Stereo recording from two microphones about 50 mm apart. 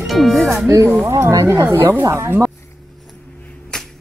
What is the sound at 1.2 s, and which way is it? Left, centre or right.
Speech, right.